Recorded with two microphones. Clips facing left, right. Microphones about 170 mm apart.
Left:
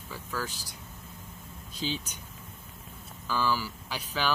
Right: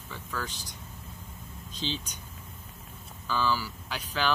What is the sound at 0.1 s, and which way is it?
Speech, 10° left (ahead or behind).